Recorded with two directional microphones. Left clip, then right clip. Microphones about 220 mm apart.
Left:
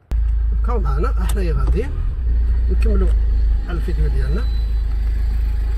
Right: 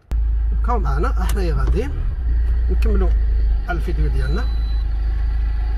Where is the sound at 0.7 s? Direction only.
25° right (ahead or behind).